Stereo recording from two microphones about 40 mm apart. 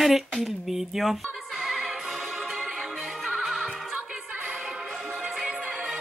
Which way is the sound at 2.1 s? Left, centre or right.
Centre.